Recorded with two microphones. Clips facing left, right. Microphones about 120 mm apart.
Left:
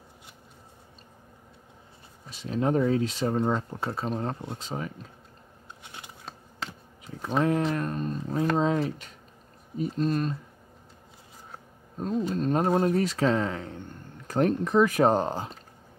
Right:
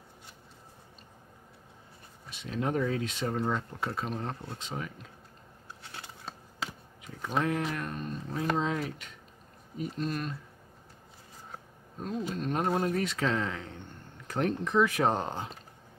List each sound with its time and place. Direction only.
2.2 s speech: 35° left (ahead or behind)
5.8 s scissors: 20° left (ahead or behind)
6.6 s a sound: 5° right (ahead or behind)
7.1 s a sound: 30° left (ahead or behind)
7.4 s speech: 30° left (ahead or behind)
12.3 s speech: 35° left (ahead or behind)